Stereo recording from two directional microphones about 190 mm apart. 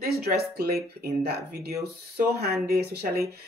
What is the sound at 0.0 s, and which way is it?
Speech, 55° right (ahead or behind).